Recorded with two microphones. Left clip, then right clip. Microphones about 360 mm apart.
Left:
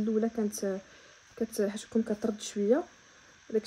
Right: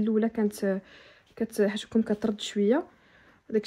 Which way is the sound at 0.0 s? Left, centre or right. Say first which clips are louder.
Right 3 dB; right.